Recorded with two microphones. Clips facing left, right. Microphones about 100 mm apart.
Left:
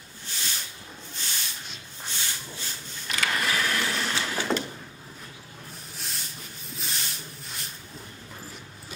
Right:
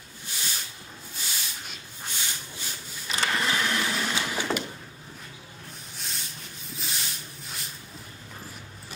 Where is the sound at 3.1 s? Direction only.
25° right (ahead or behind).